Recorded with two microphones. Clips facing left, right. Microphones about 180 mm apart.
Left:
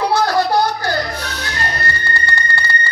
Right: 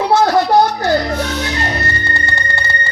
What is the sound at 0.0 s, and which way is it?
Music, 25° right (ahead or behind).